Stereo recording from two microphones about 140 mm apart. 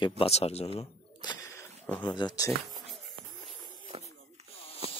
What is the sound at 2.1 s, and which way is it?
Speech, 30° left (ahead or behind).